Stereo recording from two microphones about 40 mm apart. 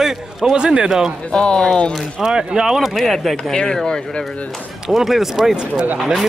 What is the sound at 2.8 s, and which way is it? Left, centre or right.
Speech, centre.